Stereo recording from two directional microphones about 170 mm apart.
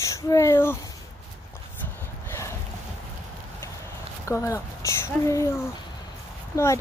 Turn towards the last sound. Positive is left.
turn(degrees=20)  # may be behind; listen again after turning